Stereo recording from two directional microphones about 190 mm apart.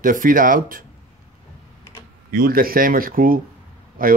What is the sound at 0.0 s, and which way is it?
Speech, 45° right (ahead or behind).